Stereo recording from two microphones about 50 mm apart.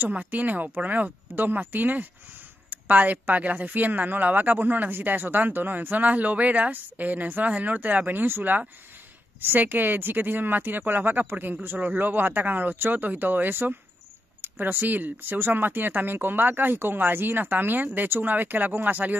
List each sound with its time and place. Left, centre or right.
0.0 s speech: right